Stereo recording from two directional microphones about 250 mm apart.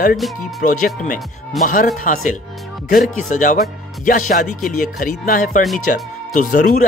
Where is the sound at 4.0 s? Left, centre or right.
Left.